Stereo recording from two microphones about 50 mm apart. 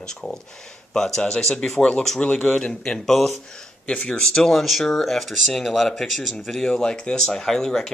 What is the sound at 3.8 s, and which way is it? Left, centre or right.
Speech, centre.